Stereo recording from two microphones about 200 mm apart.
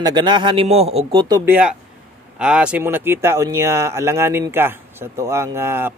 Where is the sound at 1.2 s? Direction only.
15° right (ahead or behind).